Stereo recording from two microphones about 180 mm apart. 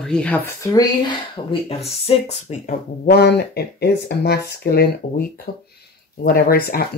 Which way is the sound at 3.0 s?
65° left (ahead or behind).